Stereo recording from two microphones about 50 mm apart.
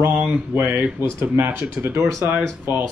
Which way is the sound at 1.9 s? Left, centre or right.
Right.